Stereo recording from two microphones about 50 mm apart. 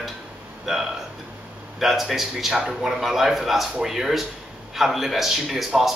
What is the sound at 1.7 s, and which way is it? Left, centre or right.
A man's voice, centre.